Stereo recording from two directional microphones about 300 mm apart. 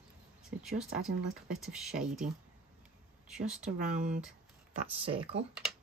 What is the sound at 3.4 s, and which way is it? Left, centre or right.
Speech, right.